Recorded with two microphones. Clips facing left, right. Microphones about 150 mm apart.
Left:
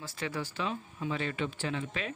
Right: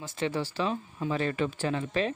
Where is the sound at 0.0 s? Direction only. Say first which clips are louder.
Right 6 dB; 25° right (ahead or behind).